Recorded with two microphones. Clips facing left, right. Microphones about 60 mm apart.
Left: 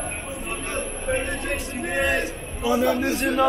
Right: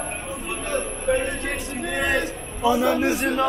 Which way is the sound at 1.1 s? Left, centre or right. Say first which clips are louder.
Right 1 dB; centre.